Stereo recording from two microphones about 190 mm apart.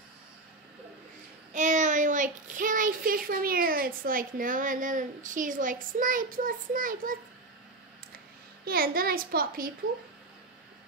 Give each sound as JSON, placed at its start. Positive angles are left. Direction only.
{"t": 1.5, "sound": "a child's voice", "side_deg": -40}
{"t": 8.6, "sound": "a child's voice", "side_deg": -50}